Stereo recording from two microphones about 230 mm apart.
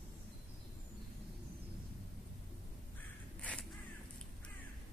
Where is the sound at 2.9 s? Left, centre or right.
Centre.